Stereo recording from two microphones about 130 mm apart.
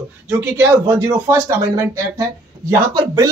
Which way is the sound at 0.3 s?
20° right (ahead or behind).